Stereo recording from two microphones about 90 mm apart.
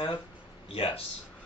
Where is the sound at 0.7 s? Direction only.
90° left.